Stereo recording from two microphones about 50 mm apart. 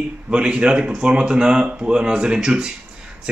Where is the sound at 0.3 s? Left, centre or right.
Right.